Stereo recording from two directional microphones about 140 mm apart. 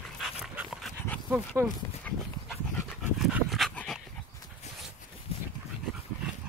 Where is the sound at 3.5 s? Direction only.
Centre (ahead or behind).